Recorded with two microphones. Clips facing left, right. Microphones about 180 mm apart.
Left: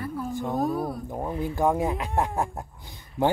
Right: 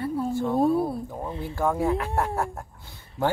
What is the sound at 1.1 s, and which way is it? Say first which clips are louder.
Speech: left 3 dB; 20° left (ahead or behind).